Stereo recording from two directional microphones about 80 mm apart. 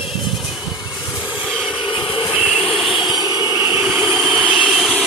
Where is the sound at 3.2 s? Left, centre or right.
Right.